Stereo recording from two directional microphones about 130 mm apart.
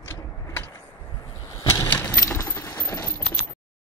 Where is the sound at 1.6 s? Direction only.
25° left (ahead or behind).